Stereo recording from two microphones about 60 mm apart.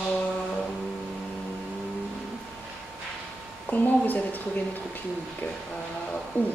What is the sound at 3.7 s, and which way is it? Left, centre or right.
Speech, left.